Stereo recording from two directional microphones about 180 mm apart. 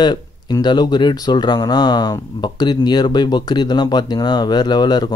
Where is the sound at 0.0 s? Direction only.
25° left (ahead or behind).